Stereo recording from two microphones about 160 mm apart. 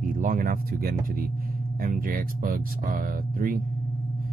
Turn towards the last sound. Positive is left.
turn(degrees=-60)  # may be behind; listen again after turning